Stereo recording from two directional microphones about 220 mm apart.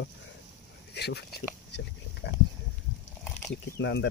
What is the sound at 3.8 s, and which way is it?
Speech, 55° left (ahead or behind).